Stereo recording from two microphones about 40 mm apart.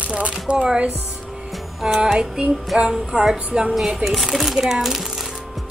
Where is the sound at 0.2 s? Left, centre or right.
Right.